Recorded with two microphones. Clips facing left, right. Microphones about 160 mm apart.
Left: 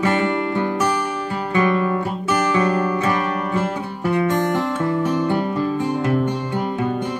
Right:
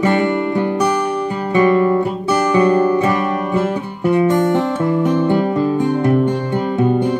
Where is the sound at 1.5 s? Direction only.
25° right (ahead or behind).